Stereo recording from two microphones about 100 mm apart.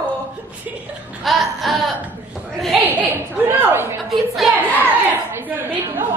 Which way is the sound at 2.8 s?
20° right (ahead or behind).